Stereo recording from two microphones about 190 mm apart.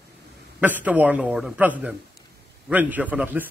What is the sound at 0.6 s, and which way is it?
A man's voice, 10° right (ahead or behind).